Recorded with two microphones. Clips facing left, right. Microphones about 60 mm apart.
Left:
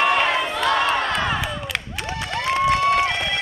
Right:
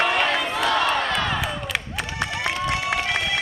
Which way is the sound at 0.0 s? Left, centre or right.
Centre.